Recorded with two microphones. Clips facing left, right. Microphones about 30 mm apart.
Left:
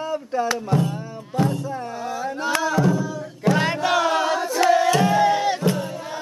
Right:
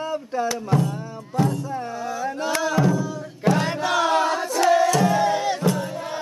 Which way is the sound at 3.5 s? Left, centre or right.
Left.